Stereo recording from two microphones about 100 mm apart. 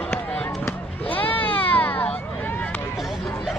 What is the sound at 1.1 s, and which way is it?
Sheep, 15° left (ahead or behind).